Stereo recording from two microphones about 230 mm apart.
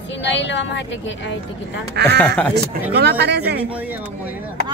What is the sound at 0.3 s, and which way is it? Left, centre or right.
Speech, left.